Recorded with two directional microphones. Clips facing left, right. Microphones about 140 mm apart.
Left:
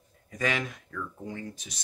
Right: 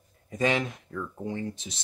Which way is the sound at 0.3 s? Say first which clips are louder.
Right 4 dB; 25° right (ahead or behind).